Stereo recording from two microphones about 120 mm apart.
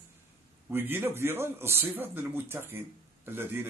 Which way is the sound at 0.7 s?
20° right (ahead or behind).